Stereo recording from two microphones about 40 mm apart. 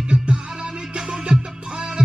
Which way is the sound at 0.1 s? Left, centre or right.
Right.